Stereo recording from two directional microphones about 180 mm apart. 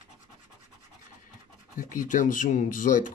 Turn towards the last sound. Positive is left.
turn(degrees=45)  # may be behind; listen again after turning